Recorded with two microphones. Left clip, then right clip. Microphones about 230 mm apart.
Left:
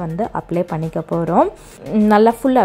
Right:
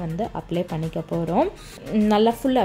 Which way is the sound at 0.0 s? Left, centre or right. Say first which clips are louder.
Left 6 dB; left.